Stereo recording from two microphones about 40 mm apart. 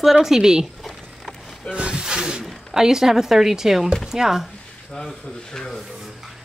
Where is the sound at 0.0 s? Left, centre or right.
Centre.